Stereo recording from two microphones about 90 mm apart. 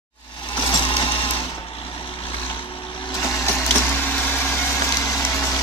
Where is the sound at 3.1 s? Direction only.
35° left (ahead or behind).